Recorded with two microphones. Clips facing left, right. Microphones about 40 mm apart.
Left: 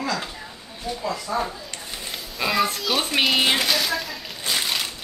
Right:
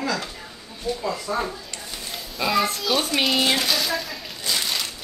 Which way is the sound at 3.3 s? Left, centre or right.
Left.